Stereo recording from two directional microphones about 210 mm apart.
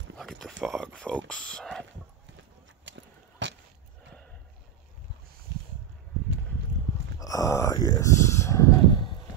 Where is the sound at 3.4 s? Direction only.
60° right (ahead or behind).